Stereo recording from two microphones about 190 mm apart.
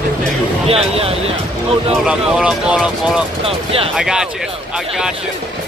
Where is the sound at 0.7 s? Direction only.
30° right (ahead or behind).